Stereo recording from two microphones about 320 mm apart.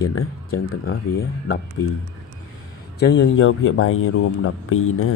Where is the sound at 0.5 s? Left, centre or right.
Left.